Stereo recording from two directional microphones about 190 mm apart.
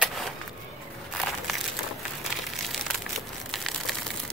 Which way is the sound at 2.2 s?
Centre (ahead or behind).